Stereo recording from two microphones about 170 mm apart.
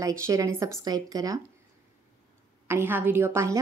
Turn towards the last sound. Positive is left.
turn(degrees=-15)  # may be behind; listen again after turning